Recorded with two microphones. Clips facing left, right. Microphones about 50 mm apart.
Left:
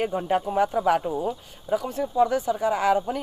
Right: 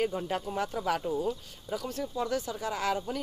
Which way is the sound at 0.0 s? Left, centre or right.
Left.